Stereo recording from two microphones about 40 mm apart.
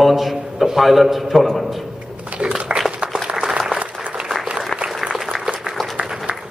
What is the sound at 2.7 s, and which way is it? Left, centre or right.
Applause, right.